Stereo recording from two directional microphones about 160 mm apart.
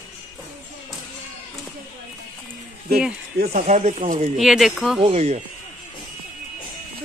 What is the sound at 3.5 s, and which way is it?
Speech, 50° right (ahead or behind).